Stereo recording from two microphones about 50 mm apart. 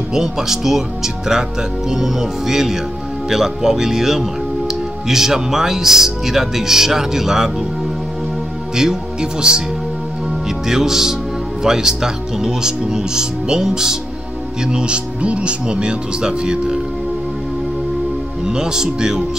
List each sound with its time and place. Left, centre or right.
0.1 s speech: centre
8.7 s speech: centre
10.7 s speech: centre
18.4 s speech: centre